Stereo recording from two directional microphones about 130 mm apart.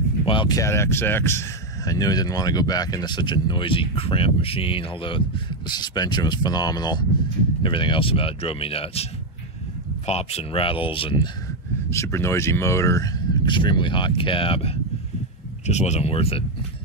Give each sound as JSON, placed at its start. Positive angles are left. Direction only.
{"t": 0.2, "sound": "speech", "side_deg": 40}
{"t": 0.6, "sound": "speech", "side_deg": 20}
{"t": 10.0, "sound": "speech", "side_deg": 50}
{"t": 11.9, "sound": "speech", "side_deg": 20}
{"t": 15.6, "sound": "speech", "side_deg": 60}